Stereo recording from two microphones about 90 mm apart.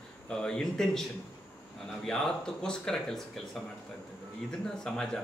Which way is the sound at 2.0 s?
5° left (ahead or behind).